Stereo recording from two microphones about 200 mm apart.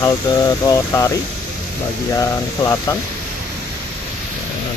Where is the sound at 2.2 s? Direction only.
15° left (ahead or behind).